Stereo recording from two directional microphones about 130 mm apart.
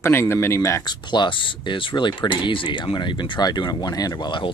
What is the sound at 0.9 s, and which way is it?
Speech, 35° left (ahead or behind).